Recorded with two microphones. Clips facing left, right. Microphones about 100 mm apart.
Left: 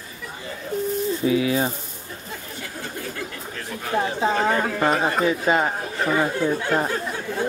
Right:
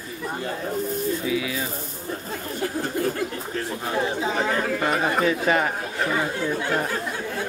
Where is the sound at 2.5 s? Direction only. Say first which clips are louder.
Right 10 dB; 45° right (ahead or behind).